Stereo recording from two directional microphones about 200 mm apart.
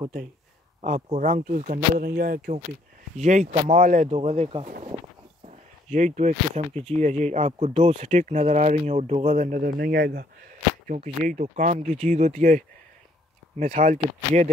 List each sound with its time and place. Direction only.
0.7 s speech: 35° right (ahead or behind)
3.2 s speech: 35° right (ahead or behind)
5.9 s speech: 35° right (ahead or behind)